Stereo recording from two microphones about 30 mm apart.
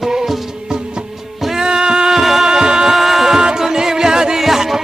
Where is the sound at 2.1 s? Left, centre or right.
Centre.